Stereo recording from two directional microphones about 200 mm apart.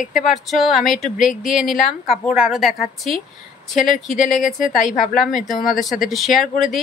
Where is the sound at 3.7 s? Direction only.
40° left (ahead or behind).